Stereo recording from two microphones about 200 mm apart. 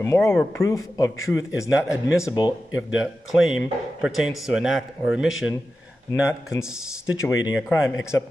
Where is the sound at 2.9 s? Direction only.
Centre (ahead or behind).